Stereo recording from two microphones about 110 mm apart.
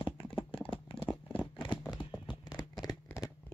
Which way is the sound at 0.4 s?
50° left (ahead or behind).